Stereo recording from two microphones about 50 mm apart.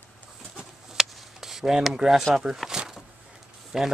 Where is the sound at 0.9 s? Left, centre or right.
Centre.